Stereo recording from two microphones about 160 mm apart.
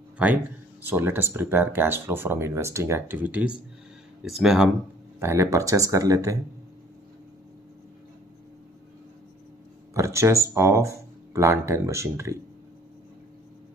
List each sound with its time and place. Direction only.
0.8 s speech: 15° right (ahead or behind)
5.2 s speech: 15° right (ahead or behind)
9.9 s speech: 20° right (ahead or behind)